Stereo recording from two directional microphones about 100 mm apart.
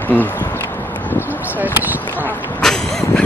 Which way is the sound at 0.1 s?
20° left (ahead or behind).